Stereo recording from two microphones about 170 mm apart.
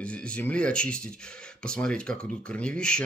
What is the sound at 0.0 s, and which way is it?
Speech, 5° left (ahead or behind).